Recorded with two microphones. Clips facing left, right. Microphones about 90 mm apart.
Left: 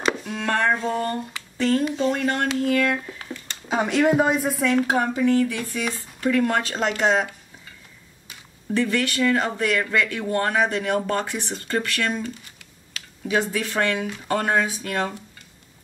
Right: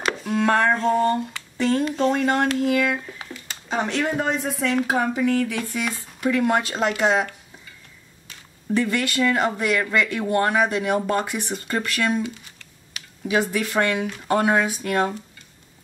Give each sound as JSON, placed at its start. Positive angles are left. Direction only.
{"t": 0.0, "sound": "speech", "side_deg": 0}
{"t": 8.7, "sound": "speech", "side_deg": -15}